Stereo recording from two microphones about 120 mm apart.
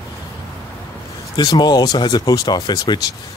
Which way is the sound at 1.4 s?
35° left (ahead or behind).